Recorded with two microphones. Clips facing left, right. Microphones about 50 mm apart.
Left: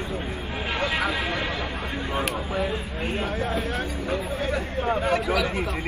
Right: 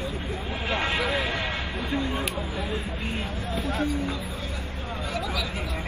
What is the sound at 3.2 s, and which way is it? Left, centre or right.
Speech, left.